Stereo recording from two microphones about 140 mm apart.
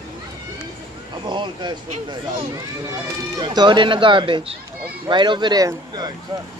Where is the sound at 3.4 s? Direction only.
30° right (ahead or behind).